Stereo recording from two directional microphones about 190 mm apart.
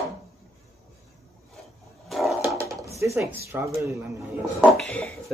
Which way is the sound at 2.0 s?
Centre (ahead or behind).